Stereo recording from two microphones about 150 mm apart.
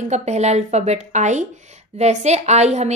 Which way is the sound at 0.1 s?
50° right (ahead or behind).